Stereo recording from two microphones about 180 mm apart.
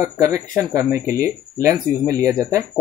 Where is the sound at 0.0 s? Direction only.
15° right (ahead or behind).